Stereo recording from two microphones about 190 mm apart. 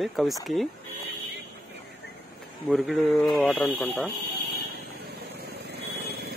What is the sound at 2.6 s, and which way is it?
Speech, centre (ahead or behind).